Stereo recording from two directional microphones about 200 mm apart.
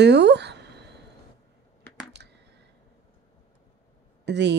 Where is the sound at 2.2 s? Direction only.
55° right (ahead or behind).